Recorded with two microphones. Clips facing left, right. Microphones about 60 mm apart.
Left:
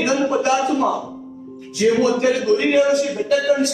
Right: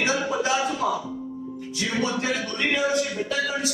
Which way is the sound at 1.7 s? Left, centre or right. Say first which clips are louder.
Left 10 dB; left.